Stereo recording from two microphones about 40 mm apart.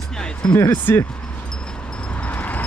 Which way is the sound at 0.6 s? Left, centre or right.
Left.